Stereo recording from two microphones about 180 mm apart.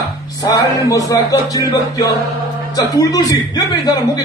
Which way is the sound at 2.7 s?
20° left (ahead or behind).